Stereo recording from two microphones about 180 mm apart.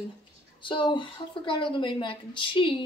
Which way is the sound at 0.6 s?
25° left (ahead or behind).